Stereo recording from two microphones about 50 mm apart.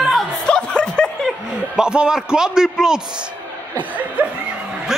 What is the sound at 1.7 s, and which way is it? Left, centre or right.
A man's voice, centre.